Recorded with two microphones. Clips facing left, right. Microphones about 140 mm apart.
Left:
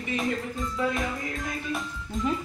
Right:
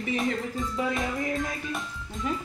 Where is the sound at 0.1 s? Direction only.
Centre (ahead or behind).